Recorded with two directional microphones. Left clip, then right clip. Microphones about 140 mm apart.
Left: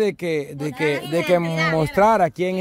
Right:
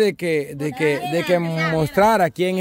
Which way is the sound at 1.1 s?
5° right (ahead or behind).